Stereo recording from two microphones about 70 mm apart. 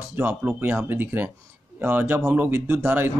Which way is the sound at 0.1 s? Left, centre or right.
Right.